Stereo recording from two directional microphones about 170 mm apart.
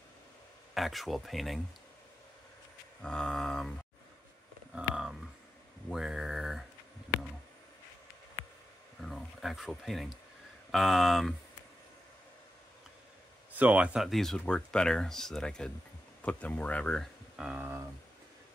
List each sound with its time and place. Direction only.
0.7 s speech: centre (ahead or behind)
3.0 s speech: 5° left (ahead or behind)
4.7 s a sound: 5° right (ahead or behind)
5.9 s mantra: 5° right (ahead or behind)
9.0 s a sound: centre (ahead or behind)
10.7 s speech: centre (ahead or behind)
13.6 s speech: 10° right (ahead or behind)
17.4 s speech: 10° right (ahead or behind)